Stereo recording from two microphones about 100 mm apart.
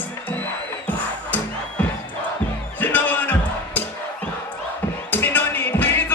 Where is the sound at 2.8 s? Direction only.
20° left (ahead or behind).